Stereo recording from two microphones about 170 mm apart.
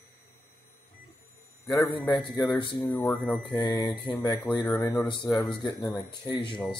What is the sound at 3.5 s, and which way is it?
Speech, 20° left (ahead or behind).